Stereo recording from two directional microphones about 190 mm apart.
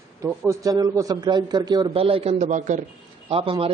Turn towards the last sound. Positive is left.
turn(degrees=-30)  # may be behind; listen again after turning